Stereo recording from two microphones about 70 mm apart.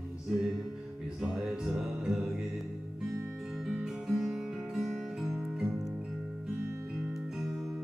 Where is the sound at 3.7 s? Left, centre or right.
Centre.